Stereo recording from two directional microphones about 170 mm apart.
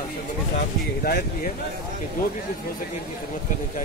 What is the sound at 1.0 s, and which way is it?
Speech, 65° left (ahead or behind).